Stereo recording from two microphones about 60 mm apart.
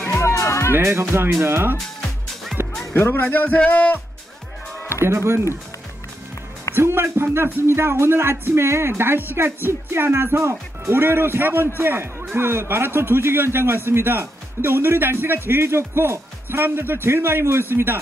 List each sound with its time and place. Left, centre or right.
0.0 s music: left
0.7 s a man's voice: right
2.9 s speech: left
5.0 s speech: right
6.7 s a man's voice: right